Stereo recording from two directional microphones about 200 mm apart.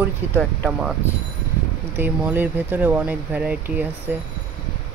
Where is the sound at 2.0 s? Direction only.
10° right (ahead or behind).